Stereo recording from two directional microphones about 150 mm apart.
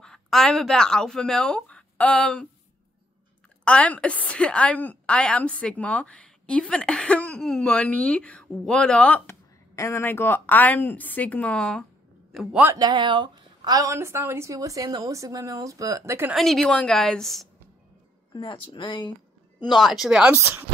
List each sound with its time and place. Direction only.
0.0 s speech: 5° left (ahead or behind)
3.6 s a woman's voice: 10° left (ahead or behind)
12.7 s a woman's voice: 25° right (ahead or behind)
16.3 s a woman's voice: centre (ahead or behind)
18.3 s speech: 30° left (ahead or behind)
19.8 s a woman's voice: centre (ahead or behind)
20.3 s speech: 15° right (ahead or behind)